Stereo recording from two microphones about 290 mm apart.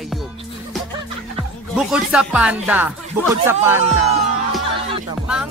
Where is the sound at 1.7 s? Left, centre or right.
Centre.